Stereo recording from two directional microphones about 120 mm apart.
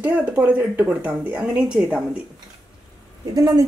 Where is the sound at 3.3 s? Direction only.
30° right (ahead or behind).